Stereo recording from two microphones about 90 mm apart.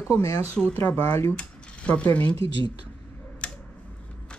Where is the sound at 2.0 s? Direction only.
20° left (ahead or behind).